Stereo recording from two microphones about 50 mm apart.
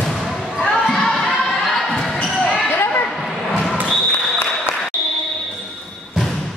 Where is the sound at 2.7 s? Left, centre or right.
Left.